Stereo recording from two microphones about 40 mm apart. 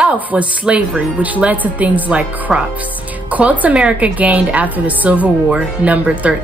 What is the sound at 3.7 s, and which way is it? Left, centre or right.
Speech, right.